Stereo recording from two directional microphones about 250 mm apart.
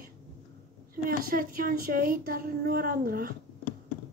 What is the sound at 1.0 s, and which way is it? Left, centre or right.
A woman's voice, right.